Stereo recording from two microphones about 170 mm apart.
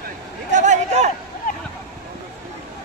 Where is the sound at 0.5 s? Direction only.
45° right (ahead or behind).